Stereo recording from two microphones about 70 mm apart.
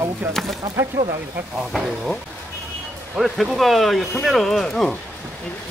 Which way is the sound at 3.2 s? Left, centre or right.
Centre.